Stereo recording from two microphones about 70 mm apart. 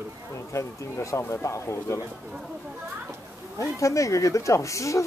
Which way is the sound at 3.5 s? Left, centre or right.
Left.